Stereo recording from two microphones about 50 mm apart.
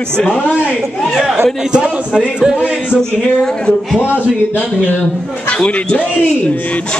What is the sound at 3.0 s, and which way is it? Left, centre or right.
Speech, centre.